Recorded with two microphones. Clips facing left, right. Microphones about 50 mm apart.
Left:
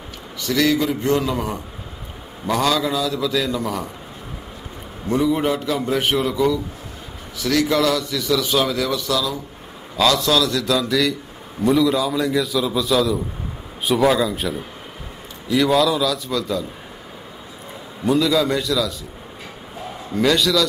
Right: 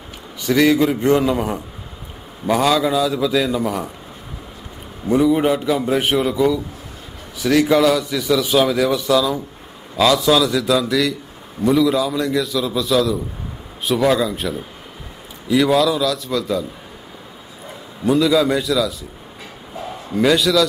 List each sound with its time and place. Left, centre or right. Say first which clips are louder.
0.6 s a man's voice: right 4 dB; right
5.0 s a man's voice: right 4 dB; centre
8.7 s speech: right 5 dB; right
9.9 s a man's voice: right 3 dB; centre
15.5 s a man's voice: right 2 dB; centre
18.0 s a man's voice: right 2 dB; centre
20.2 s a man's voice: right 2 dB; centre